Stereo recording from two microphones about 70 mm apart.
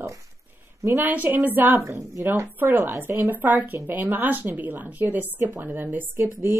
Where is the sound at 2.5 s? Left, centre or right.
Right.